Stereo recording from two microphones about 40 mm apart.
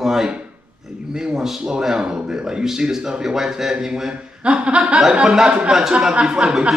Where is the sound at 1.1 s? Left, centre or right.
Centre.